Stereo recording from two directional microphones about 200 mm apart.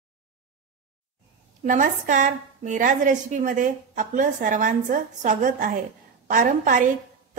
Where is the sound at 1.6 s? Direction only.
40° right (ahead or behind).